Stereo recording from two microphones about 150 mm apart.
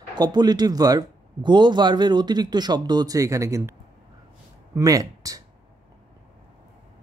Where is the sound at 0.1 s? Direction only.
30° right (ahead or behind).